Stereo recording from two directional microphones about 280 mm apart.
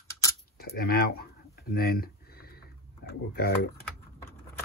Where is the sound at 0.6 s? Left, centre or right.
Left.